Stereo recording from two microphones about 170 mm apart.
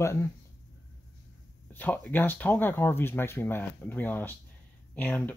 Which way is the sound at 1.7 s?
10° left (ahead or behind).